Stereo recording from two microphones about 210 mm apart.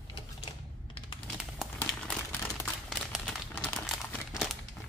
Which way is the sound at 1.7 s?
10° left (ahead or behind).